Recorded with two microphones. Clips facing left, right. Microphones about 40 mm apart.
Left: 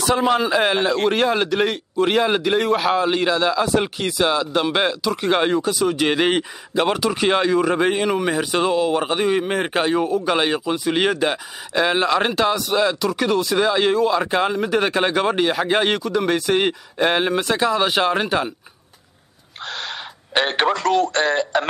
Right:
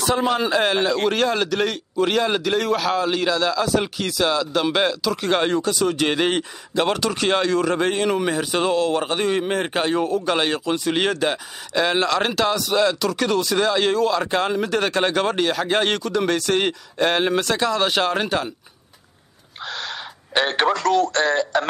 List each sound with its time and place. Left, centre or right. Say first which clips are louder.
0.0 s speech: left 2 dB; centre
19.6 s speech: left 1 dB; centre